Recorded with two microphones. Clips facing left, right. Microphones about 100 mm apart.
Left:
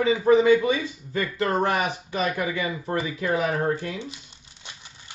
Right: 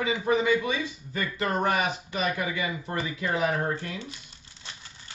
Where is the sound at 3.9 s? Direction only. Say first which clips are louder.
Left 4 dB; 20° left (ahead or behind).